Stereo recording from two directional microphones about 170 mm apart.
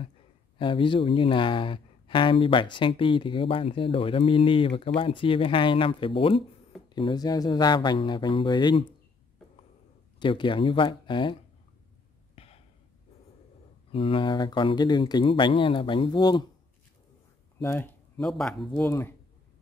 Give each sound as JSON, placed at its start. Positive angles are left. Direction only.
{"t": 0.6, "sound": "speech", "side_deg": 30}
{"t": 10.1, "sound": "speech", "side_deg": 30}
{"t": 12.4, "sound": "a sound", "side_deg": 35}
{"t": 13.9, "sound": "speech", "side_deg": 30}
{"t": 17.6, "sound": "a sound", "side_deg": 10}
{"t": 18.2, "sound": "speech", "side_deg": 0}
{"t": 18.8, "sound": "speech", "side_deg": 15}